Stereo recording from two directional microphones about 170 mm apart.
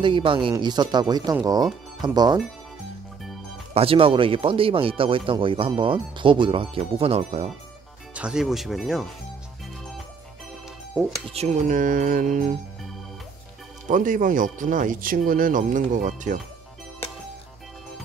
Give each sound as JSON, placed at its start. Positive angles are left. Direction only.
{"t": 0.0, "sound": "speech", "side_deg": -30}
{"t": 3.7, "sound": "speech", "side_deg": -35}
{"t": 8.1, "sound": "speech", "side_deg": -5}
{"t": 10.9, "sound": "speech", "side_deg": -10}
{"t": 11.3, "sound": "speech", "side_deg": -45}
{"t": 13.8, "sound": "speech", "side_deg": -50}